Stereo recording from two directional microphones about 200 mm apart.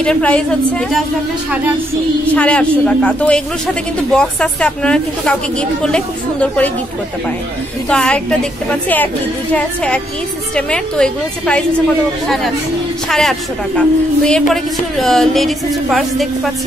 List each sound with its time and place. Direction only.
0.0 s a man's voice: 5° left (ahead or behind)
2.3 s a man's voice: 5° left (ahead or behind)
7.9 s a man's voice: 5° left (ahead or behind)
13.1 s a man's voice: centre (ahead or behind)